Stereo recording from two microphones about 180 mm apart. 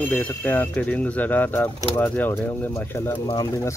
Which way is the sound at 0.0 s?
10° left (ahead or behind).